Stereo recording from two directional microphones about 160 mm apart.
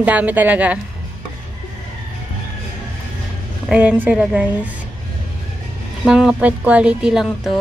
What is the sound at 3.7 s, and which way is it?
Speech, 10° right (ahead or behind).